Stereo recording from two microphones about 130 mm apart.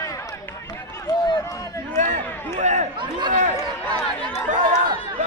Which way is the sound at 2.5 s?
65° right (ahead or behind).